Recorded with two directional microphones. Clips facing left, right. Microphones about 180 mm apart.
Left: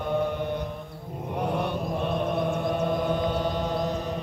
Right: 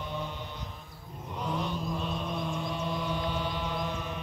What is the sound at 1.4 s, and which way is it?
Chant, 60° left (ahead or behind).